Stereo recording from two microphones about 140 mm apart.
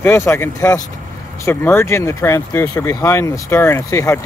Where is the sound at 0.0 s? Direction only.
20° left (ahead or behind).